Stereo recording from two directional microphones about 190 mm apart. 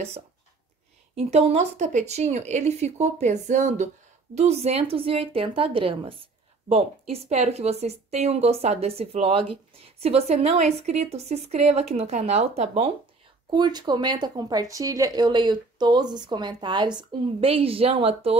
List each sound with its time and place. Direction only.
1.1 s a woman's voice: 35° right (ahead or behind)
13.5 s speech: 20° right (ahead or behind)